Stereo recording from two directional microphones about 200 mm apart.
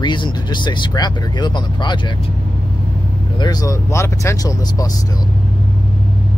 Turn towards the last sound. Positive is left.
turn(degrees=15)  # may be behind; listen again after turning